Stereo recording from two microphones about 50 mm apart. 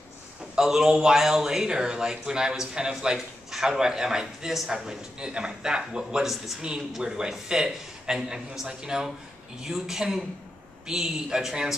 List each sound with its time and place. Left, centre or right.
0.6 s a man's voice: centre